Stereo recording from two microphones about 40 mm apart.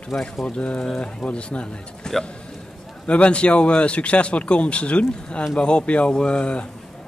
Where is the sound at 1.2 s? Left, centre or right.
Left.